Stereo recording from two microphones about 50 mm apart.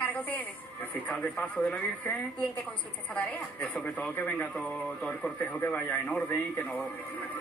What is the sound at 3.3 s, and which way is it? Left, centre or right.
Speech, left.